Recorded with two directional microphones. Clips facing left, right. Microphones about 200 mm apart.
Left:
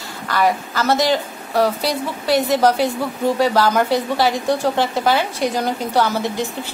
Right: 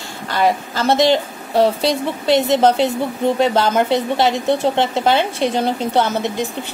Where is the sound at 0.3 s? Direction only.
25° right (ahead or behind).